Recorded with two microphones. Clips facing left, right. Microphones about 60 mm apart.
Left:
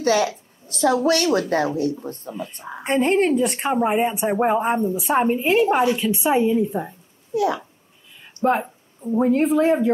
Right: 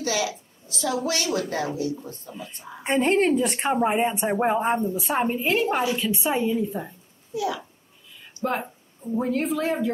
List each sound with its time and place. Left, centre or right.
0.0 s a woman's voice: left
2.8 s a woman's voice: centre
7.3 s speech: left
8.5 s speech: left